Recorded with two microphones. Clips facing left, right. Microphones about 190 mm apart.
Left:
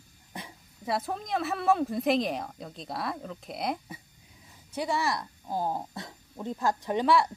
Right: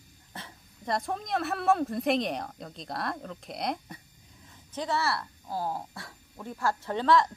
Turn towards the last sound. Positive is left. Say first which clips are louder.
# even
turn(degrees=15)  # may be behind; listen again after turning